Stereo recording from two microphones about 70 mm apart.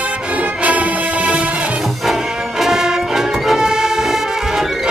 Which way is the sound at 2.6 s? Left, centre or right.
Centre.